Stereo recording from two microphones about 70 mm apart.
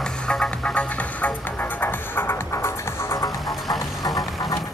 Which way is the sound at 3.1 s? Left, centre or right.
Left.